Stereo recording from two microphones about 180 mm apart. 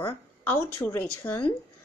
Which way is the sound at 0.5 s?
15° left (ahead or behind).